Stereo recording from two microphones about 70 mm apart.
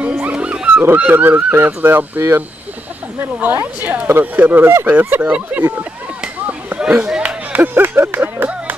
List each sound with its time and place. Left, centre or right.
0.0 s wild animals: centre
0.9 s speech: right
6.2 s a sound: centre